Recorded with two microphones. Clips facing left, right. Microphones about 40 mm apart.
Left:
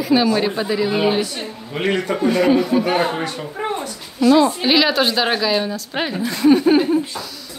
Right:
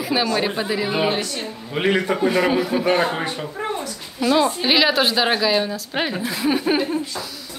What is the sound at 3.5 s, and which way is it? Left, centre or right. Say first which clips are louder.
Speech: left 4 dB; centre.